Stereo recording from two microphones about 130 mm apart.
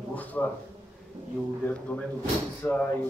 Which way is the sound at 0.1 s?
10° left (ahead or behind).